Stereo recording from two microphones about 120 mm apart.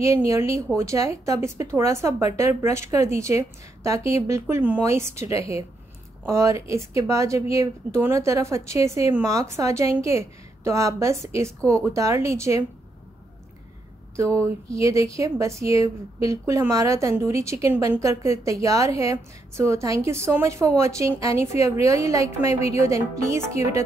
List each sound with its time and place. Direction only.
0.0 s a woman's voice: 25° right (ahead or behind)
14.1 s a woman's voice: 25° right (ahead or behind)